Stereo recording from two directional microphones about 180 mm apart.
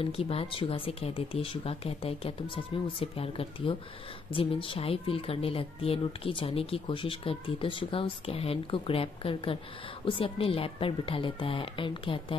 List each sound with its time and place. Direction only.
0.0 s speech: 35° left (ahead or behind)